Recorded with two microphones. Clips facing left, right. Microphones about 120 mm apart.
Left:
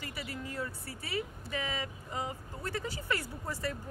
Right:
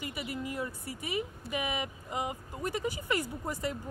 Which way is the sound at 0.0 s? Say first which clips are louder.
Right 4 dB; 15° right (ahead or behind).